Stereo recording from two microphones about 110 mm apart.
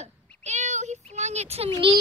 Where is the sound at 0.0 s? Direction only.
90° right.